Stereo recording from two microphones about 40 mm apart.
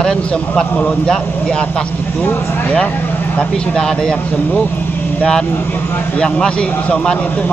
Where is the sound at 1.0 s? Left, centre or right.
Left.